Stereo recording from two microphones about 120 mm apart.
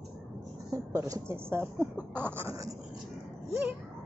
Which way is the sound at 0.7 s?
25° right (ahead or behind).